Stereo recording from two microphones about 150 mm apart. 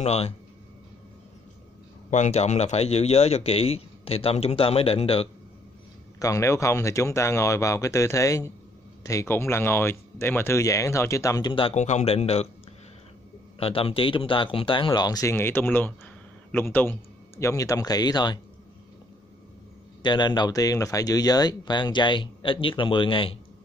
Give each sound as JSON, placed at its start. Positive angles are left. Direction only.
{"t": 0.0, "sound": "a man's voice", "side_deg": 45}
{"t": 2.0, "sound": "a man's voice", "side_deg": 55}
{"t": 6.1, "sound": "speech", "side_deg": 20}
{"t": 11.7, "sound": "a man's voice", "side_deg": 50}
{"t": 13.6, "sound": "a man's voice", "side_deg": 40}
{"t": 20.0, "sound": "speech", "side_deg": 30}